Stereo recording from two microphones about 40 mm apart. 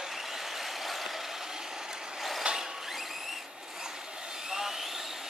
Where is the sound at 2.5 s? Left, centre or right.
Right.